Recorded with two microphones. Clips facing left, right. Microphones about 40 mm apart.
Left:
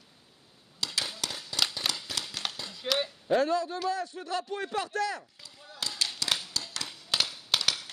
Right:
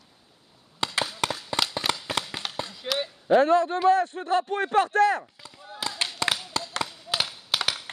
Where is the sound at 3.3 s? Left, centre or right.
Right.